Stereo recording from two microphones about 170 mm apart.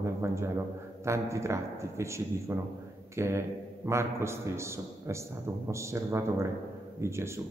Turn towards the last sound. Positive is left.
turn(degrees=-15)  # may be behind; listen again after turning